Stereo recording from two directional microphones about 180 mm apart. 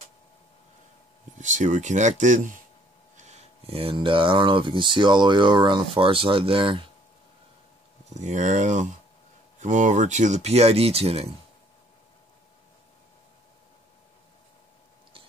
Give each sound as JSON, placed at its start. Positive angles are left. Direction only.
{"t": 1.4, "sound": "speech", "side_deg": -45}
{"t": 8.1, "sound": "speech", "side_deg": -40}